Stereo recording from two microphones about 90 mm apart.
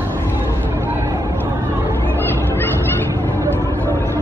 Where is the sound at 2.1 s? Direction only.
25° left (ahead or behind).